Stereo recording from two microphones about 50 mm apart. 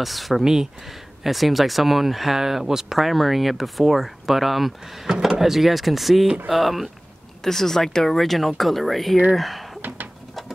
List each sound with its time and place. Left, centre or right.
0.0 s speech: centre
6.2 s speech: centre
6.5 s speech: centre
9.8 s a sound: right